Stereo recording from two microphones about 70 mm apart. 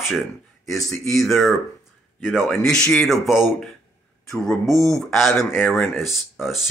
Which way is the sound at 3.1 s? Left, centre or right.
Centre.